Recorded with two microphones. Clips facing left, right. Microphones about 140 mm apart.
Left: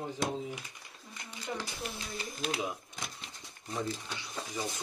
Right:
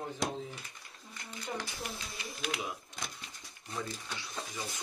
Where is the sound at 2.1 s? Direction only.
25° left (ahead or behind).